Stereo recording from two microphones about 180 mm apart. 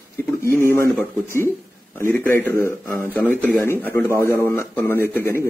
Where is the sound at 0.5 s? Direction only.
15° left (ahead or behind).